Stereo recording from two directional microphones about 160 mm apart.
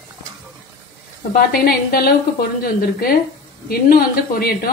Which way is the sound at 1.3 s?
70° left (ahead or behind).